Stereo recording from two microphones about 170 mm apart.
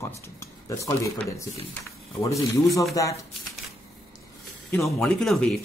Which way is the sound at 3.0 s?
20° left (ahead or behind).